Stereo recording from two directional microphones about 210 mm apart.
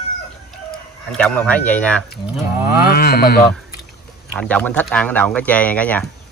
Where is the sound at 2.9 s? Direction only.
45° left (ahead or behind).